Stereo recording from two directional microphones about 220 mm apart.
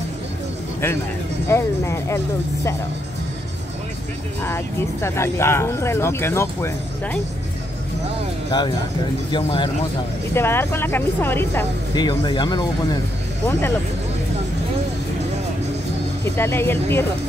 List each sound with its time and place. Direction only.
1.5 s speech: 10° left (ahead or behind)
4.5 s speech: 10° left (ahead or behind)
8.5 s speech: 20° left (ahead or behind)
10.3 s speech: 10° left (ahead or behind)
16.3 s speech: 10° left (ahead or behind)